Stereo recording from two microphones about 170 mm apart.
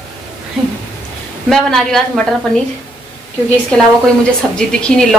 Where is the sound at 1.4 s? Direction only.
Centre (ahead or behind).